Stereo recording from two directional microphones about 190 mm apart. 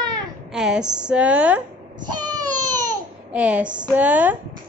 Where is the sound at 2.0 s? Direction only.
20° right (ahead or behind).